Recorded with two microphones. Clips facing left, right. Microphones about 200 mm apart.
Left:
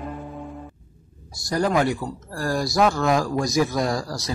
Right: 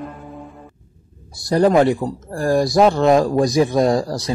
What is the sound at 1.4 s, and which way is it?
Speech, 30° right (ahead or behind).